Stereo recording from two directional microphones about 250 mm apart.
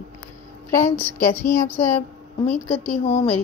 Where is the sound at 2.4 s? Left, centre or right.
Centre.